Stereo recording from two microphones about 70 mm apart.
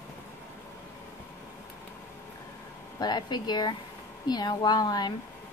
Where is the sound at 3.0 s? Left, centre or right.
Left.